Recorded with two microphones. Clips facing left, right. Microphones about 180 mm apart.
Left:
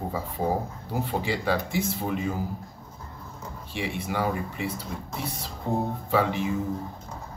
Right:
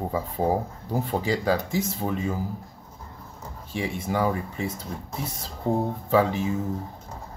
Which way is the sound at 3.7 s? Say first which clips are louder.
Right 3 dB; 45° right (ahead or behind).